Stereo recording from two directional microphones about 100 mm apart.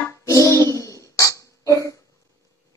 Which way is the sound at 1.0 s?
30° left (ahead or behind).